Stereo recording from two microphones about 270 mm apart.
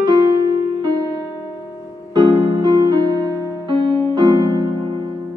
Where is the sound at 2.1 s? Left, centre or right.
Centre.